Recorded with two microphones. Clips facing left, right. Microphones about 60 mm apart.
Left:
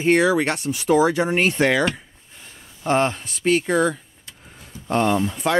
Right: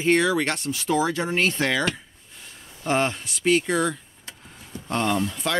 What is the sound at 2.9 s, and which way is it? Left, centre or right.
Speech, centre.